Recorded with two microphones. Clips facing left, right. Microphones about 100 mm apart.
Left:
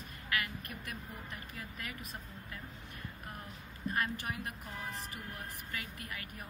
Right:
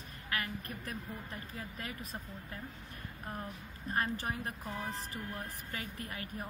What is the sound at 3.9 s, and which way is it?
Speech, 35° right (ahead or behind).